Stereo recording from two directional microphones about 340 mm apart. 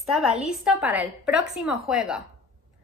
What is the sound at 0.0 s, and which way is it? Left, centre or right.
A woman's voice, centre.